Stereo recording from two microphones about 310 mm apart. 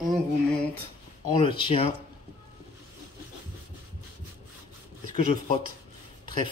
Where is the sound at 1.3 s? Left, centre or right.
Centre.